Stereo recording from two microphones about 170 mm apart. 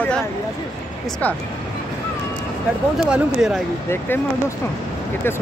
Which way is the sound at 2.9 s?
5° right (ahead or behind).